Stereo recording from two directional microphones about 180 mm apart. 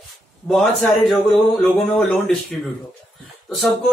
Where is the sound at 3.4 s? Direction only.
Centre (ahead or behind).